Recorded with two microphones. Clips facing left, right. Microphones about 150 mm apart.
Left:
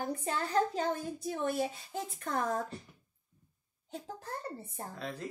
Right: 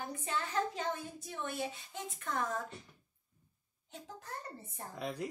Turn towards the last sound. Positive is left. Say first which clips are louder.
# right 2 dB
turn(degrees=-15)  # may be behind; listen again after turning